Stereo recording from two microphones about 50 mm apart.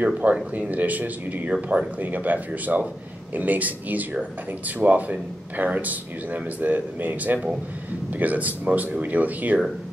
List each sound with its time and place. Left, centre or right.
0.0 s speech: right
1.5 s speech: right
2.0 s speech: right